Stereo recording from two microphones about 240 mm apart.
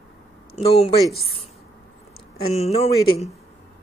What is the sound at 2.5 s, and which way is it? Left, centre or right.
Speech, left.